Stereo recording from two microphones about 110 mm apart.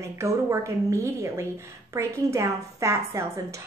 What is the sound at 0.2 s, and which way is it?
Speech, 25° right (ahead or behind).